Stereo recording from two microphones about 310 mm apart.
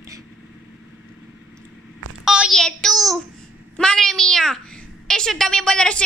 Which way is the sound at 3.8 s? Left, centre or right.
Centre.